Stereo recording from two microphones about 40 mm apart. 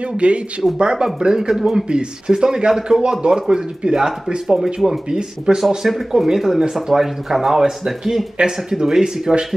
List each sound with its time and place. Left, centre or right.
0.2 s speech: right; by 1.9 s centre
1.9 s speech: right